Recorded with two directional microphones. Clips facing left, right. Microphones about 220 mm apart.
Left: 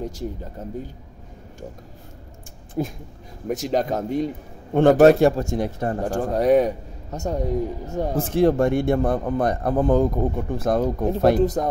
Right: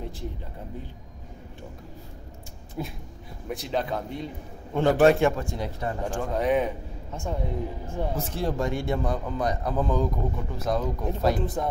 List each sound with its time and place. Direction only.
0.0 s a man's voice: 40° left (ahead or behind)
2.8 s a man's voice: 45° left (ahead or behind)
11.3 s a man's voice: 40° left (ahead or behind)